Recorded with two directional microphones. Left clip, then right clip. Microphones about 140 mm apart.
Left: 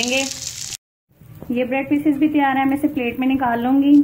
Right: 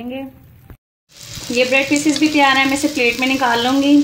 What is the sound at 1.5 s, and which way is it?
Speech, 20° right (ahead or behind).